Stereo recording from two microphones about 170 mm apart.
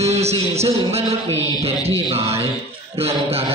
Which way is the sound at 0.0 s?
40° right (ahead or behind).